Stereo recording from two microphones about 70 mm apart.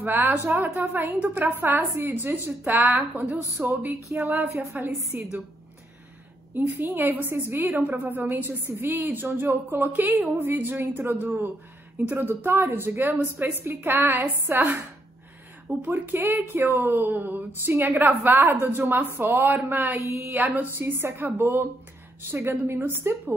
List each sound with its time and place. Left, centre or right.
0.0 s a woman's voice: right
3.6 s speech: centre
4.3 s a woman's voice: right
6.8 s a woman's voice: right
15.8 s a woman's voice: right